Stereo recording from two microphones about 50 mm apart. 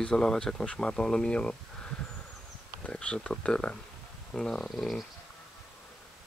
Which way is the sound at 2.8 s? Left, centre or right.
Left.